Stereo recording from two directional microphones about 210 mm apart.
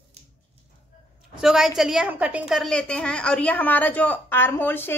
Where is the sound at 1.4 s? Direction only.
Centre (ahead or behind).